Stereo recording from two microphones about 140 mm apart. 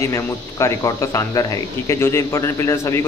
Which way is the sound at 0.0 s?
20° left (ahead or behind).